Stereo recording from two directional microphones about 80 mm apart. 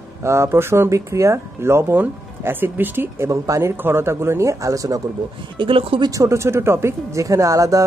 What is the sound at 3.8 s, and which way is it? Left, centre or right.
A woman's voice, right.